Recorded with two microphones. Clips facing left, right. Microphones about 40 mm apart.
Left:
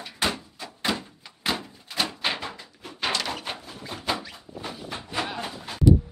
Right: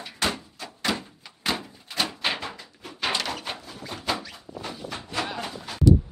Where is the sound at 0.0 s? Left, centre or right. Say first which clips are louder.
Even; centre.